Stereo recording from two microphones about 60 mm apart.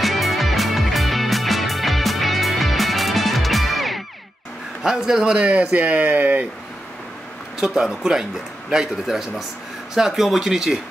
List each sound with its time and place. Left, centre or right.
0.0 s music: centre
4.8 s speech: centre; by 6.4 s right
7.6 s speech: centre